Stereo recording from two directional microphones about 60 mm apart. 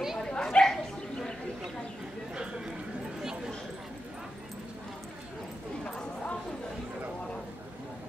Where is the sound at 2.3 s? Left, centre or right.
Centre.